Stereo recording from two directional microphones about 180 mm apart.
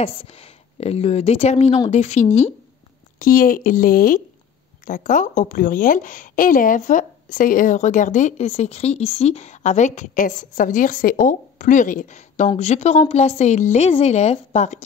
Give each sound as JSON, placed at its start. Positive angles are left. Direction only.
{"t": 0.7, "sound": "a woman's voice", "side_deg": 35}
{"t": 3.2, "sound": "a woman's voice", "side_deg": 50}